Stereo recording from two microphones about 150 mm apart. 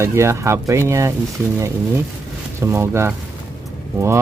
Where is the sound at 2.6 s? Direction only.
20° right (ahead or behind).